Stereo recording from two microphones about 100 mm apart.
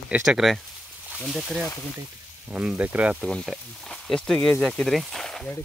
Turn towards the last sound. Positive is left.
turn(degrees=5)  # may be behind; listen again after turning